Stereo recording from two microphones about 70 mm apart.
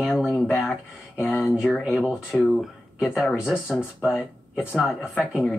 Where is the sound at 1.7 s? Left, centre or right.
Centre.